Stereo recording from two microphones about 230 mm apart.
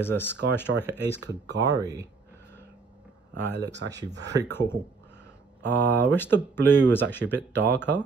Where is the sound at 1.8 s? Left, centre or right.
Centre.